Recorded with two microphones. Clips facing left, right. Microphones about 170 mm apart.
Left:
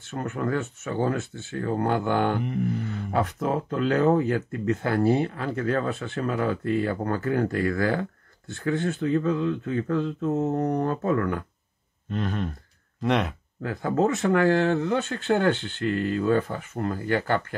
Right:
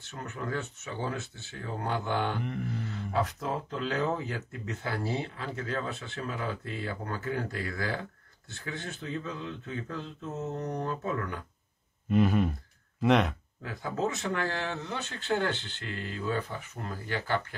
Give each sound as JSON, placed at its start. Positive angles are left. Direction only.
{"t": 0.1, "sound": "speech", "side_deg": 55}
{"t": 12.1, "sound": "speech", "side_deg": -10}
{"t": 13.6, "sound": "speech", "side_deg": 55}